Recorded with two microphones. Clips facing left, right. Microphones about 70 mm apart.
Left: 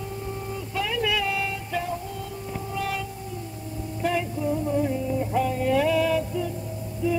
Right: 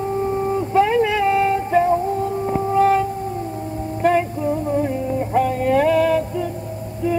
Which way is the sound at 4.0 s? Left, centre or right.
Right.